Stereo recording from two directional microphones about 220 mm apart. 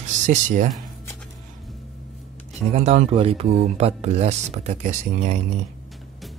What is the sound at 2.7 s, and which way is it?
Speech, 30° right (ahead or behind).